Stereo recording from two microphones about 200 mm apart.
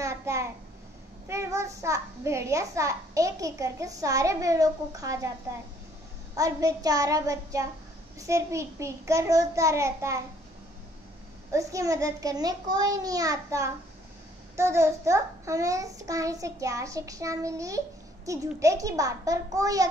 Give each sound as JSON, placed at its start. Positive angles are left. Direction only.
{"t": 0.0, "sound": "a child's voice", "side_deg": -15}
{"t": 6.3, "sound": "a child's voice", "side_deg": -15}
{"t": 11.5, "sound": "a child's voice", "side_deg": -15}